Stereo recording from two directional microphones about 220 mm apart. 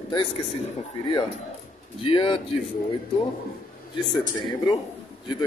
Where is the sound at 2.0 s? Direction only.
25° left (ahead or behind).